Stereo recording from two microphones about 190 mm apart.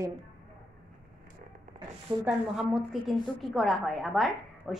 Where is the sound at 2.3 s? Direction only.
Centre (ahead or behind).